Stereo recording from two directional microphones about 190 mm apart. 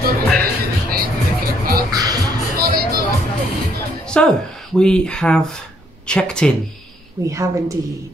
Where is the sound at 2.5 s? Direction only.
50° right (ahead or behind).